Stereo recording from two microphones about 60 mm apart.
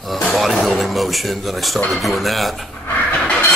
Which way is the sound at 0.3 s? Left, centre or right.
Centre.